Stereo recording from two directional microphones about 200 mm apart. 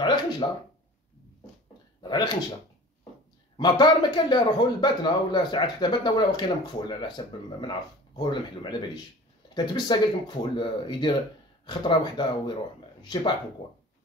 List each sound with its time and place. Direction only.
0.0 s speech: 20° left (ahead or behind)
2.0 s a sound: 20° left (ahead or behind)
3.5 s a man's voice: 20° left (ahead or behind)
8.2 s a man's voice: 20° left (ahead or behind)